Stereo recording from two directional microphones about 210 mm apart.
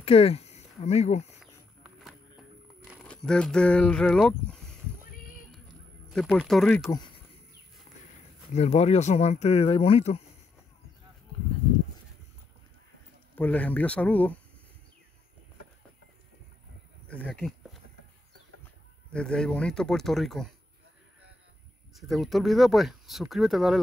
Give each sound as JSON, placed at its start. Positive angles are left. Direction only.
{"t": 0.0, "sound": "speech", "side_deg": 30}
{"t": 2.9, "sound": "speech", "side_deg": 5}
{"t": 6.0, "sound": "speech", "side_deg": 0}
{"t": 8.5, "sound": "speech", "side_deg": 30}
{"t": 13.4, "sound": "speech", "side_deg": 5}
{"t": 17.1, "sound": "speech", "side_deg": 5}
{"t": 19.1, "sound": "speech", "side_deg": 5}
{"t": 21.9, "sound": "speech", "side_deg": 0}